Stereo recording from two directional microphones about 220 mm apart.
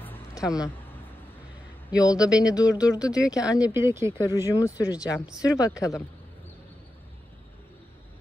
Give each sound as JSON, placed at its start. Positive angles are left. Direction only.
{"t": 0.0, "sound": "a sound", "side_deg": 10}
{"t": 2.0, "sound": "speech", "side_deg": 15}
{"t": 3.1, "sound": "speech", "side_deg": -5}
{"t": 4.5, "sound": "speech", "side_deg": 15}